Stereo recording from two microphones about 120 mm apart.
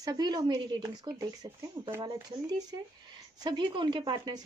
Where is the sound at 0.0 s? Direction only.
35° right (ahead or behind).